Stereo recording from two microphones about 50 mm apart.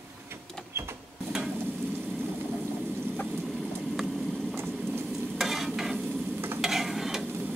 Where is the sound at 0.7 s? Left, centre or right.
Right.